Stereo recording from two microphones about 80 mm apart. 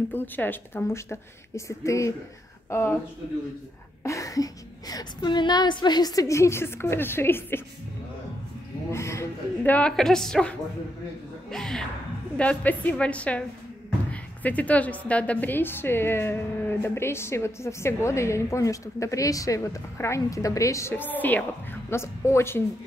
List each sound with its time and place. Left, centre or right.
0.1 s a woman's voice: left
4.0 s a woman's voice: left
8.9 s a woman's voice: left
9.6 s a woman's voice: centre
11.5 s speech: centre
12.4 s a woman's voice: centre
14.4 s a woman's voice: centre; by 20.9 s left
20.9 s speech: left
21.9 s a woman's voice: left